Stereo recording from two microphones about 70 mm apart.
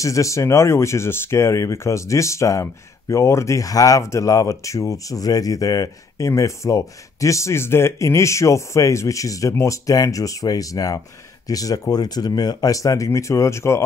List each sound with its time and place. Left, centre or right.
0.0 s speech: left